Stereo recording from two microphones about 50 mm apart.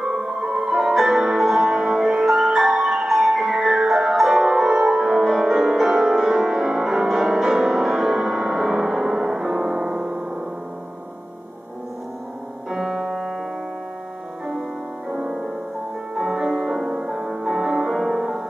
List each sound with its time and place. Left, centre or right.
0.2 s music: right
0.6 s music: centre
9.8 s music: right
12.6 s music: centre
15.2 s music: right
16.2 s music: centre